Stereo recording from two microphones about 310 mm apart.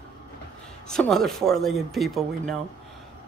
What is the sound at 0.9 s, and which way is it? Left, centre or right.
Speech, centre.